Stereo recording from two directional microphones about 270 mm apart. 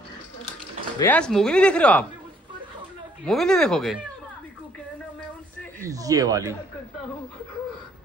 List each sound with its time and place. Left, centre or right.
0.9 s speech: centre
3.3 s speech: centre
5.9 s speech: centre